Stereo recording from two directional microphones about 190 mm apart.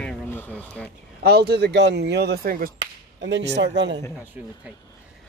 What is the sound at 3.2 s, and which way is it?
Speech, 65° right (ahead or behind).